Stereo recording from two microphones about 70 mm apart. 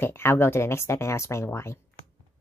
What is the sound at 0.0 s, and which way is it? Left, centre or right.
Speech, left.